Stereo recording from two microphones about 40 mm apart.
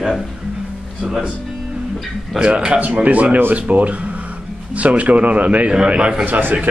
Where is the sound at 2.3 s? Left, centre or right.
Right.